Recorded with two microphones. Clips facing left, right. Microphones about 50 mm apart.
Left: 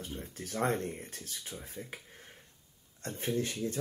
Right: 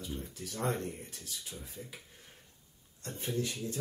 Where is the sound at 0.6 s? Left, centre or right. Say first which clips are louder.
Left 3 dB; left.